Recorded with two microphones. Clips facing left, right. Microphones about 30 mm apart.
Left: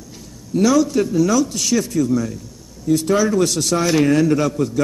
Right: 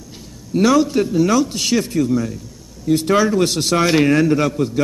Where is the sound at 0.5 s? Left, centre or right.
Right.